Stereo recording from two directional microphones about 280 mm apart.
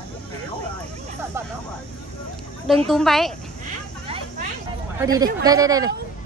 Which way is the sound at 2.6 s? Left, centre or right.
Centre.